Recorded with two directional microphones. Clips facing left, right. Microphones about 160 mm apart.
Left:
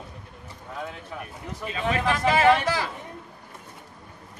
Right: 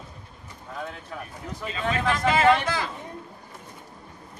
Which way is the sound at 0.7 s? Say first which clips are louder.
Even; 5° left (ahead or behind).